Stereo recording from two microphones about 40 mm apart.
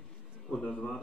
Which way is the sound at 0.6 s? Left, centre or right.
Left.